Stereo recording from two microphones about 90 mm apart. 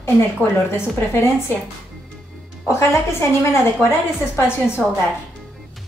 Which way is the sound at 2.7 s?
30° left (ahead or behind).